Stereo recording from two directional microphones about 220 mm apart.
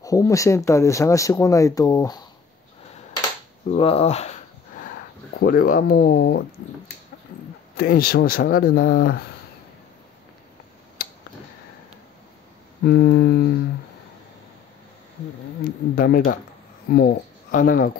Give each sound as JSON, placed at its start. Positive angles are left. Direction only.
{"t": 0.0, "sound": "speech", "side_deg": 15}
{"t": 3.1, "sound": "a sound", "side_deg": 20}
{"t": 5.4, "sound": "speech", "side_deg": 40}
{"t": 7.7, "sound": "speech", "side_deg": 45}
{"t": 8.9, "sound": "speech", "side_deg": 60}
{"t": 11.0, "sound": "a sound", "side_deg": 40}
{"t": 12.8, "sound": "speech", "side_deg": 45}
{"t": 16.0, "sound": "speech", "side_deg": 40}